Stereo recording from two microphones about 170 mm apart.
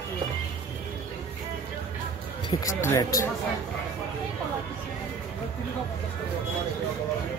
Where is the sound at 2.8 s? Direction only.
15° left (ahead or behind).